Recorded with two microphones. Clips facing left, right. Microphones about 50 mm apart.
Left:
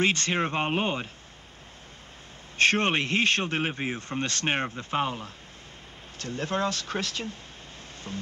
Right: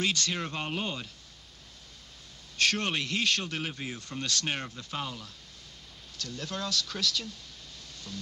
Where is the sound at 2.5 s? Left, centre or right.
Left.